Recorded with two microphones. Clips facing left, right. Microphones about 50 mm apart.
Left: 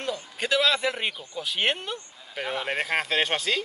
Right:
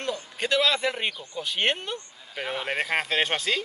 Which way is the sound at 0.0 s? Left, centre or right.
Centre.